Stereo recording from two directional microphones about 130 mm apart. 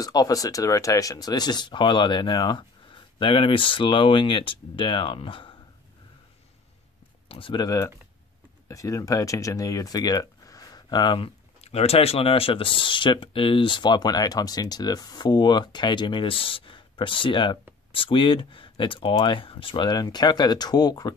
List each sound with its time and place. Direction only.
0.0 s speech: 30° left (ahead or behind)
7.2 s speech: 45° left (ahead or behind)
7.6 s speech: 25° left (ahead or behind)